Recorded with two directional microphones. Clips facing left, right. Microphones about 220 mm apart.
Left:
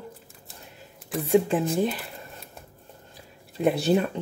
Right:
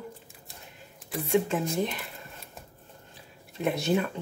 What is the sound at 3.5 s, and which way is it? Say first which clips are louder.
Speech: left 5 dB; 35° left (ahead or behind).